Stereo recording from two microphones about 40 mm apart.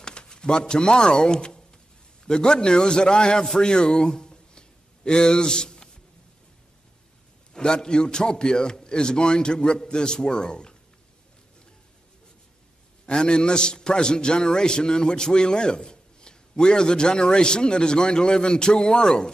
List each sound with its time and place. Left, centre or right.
0.0 s a man's voice: left
3.5 s a sound: left
7.5 s a man's voice: centre
13.0 s a man's voice: left